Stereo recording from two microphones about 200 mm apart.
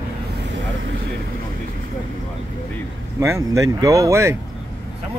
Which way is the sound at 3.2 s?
15° right (ahead or behind).